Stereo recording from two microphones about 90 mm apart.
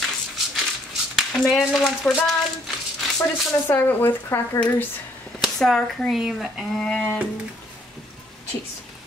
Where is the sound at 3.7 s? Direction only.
25° left (ahead or behind).